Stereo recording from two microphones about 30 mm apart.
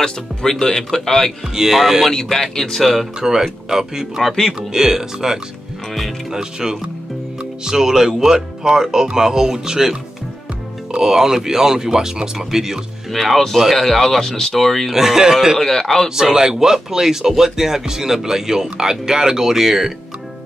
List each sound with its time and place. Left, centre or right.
0.0 s speech: centre
1.5 s speech: centre
2.2 s speech: centre
2.8 s speech: centre
3.2 s speech: centre
11.0 s speech: centre
13.1 s speech: centre
14.9 s speech: centre
15.6 s speech: centre
16.2 s speech: centre